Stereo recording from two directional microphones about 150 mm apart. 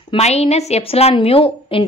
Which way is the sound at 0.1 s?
45° left (ahead or behind).